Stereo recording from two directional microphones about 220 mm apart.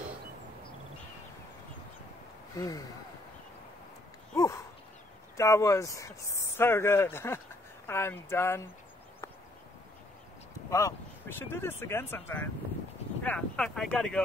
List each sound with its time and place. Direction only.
2.5 s speech: 15° left (ahead or behind)
4.4 s a sound: 15° left (ahead or behind)
5.4 s speech: 15° left (ahead or behind)
10.7 s speech: 15° left (ahead or behind)